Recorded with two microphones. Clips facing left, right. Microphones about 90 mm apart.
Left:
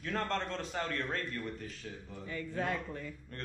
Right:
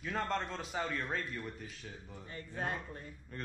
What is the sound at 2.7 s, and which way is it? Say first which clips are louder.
Speech: left 4 dB; 90° left.